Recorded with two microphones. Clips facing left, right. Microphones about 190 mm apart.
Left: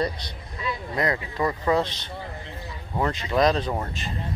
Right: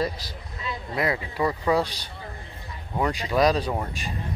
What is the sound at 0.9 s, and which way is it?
Speech, 10° right (ahead or behind).